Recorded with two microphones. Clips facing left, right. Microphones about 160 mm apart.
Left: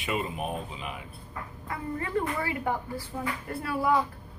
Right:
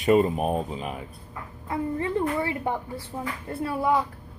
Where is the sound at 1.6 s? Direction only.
25° right (ahead or behind).